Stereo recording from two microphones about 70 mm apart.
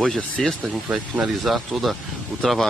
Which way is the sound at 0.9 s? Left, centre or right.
Centre.